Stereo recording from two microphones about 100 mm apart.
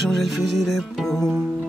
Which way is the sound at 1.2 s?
25° right (ahead or behind).